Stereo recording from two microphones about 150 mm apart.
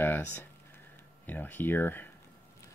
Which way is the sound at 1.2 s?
10° left (ahead or behind).